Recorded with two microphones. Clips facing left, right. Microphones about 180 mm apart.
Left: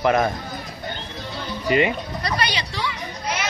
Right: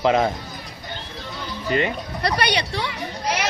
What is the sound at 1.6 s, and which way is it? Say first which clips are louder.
Speech: left 3 dB; 10° left (ahead or behind).